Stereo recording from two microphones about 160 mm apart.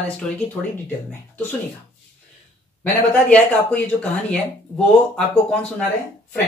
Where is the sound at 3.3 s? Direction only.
5° left (ahead or behind).